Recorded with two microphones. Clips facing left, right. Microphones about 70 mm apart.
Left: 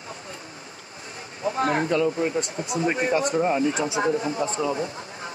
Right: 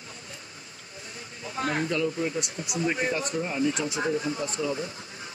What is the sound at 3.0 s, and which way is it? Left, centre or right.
Speech, left.